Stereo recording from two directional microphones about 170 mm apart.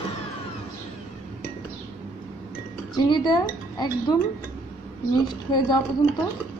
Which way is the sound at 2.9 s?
25° left (ahead or behind).